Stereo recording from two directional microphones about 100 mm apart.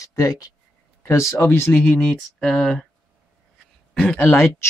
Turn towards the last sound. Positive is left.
turn(degrees=25)  # may be behind; listen again after turning